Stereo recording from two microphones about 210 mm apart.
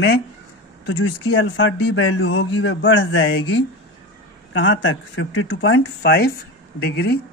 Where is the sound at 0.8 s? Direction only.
60° left (ahead or behind).